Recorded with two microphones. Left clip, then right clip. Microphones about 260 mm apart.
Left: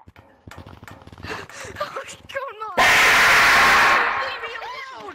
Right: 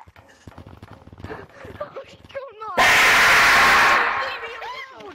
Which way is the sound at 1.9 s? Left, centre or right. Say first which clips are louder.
Left 5 dB; left.